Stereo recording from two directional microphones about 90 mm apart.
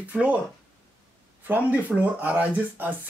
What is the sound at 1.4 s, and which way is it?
Speech, 15° right (ahead or behind).